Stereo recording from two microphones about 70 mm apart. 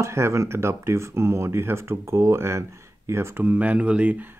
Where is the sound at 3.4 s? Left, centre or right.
Right.